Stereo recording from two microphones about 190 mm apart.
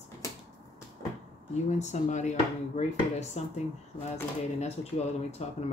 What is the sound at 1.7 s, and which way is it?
Speech, 35° left (ahead or behind).